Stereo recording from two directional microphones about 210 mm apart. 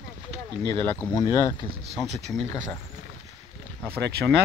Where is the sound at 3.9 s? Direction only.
55° right (ahead or behind).